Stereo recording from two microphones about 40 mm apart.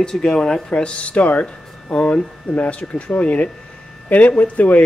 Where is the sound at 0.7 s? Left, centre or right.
Left.